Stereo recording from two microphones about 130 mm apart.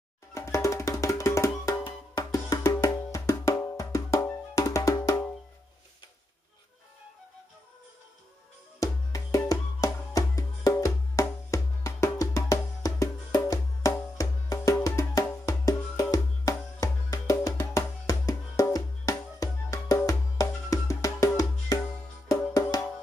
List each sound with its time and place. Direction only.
0.3 s music: 25° left (ahead or behind)
8.7 s music: 25° left (ahead or behind)